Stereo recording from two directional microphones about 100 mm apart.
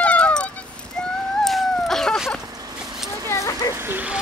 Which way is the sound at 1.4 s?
5° left (ahead or behind).